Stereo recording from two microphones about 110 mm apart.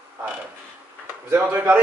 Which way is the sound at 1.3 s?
20° right (ahead or behind).